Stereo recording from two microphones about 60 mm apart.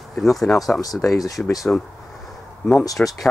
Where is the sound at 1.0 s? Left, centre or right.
Left.